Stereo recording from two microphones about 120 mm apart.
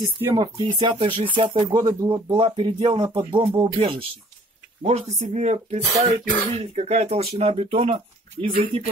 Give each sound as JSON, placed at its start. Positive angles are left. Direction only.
{"t": 0.3, "sound": "speech", "side_deg": -40}
{"t": 1.8, "sound": "speech", "side_deg": -30}
{"t": 2.4, "sound": "speech", "side_deg": -45}
{"t": 4.8, "sound": "speech", "side_deg": -65}